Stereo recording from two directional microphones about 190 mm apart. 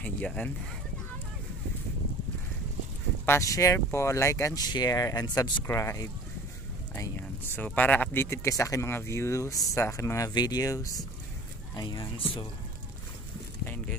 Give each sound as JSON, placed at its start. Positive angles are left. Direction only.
{"t": 0.0, "sound": "speech", "side_deg": 5}
{"t": 3.3, "sound": "speech", "side_deg": 15}